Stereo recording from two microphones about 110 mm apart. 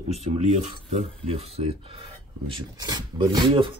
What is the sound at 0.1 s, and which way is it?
Speech, 70° right (ahead or behind).